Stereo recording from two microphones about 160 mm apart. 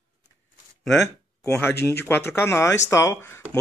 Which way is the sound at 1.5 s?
15° left (ahead or behind).